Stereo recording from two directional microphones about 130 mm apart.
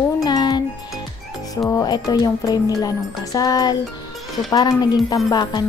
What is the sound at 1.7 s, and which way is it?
Music, 30° left (ahead or behind).